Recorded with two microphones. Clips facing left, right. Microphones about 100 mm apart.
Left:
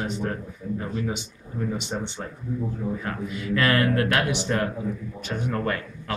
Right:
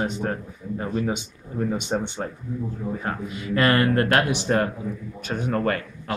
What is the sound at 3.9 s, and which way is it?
Speech, 40° right (ahead or behind).